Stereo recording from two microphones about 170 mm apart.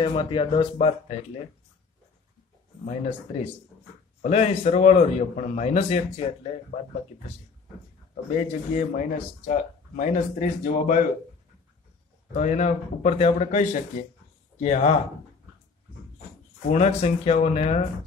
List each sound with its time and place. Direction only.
0.0 s speech: 30° left (ahead or behind)
2.8 s a man's voice: 40° left (ahead or behind)
6.7 s speech: 55° left (ahead or behind)
8.3 s speech: 45° left (ahead or behind)
12.4 s speech: 45° left (ahead or behind)
16.7 s a man's voice: 40° left (ahead or behind)